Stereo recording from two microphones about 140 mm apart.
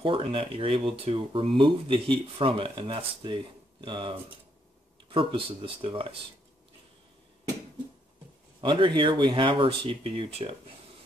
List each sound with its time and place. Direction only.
0.0 s speech: 40° right (ahead or behind)
8.5 s speech: 35° right (ahead or behind)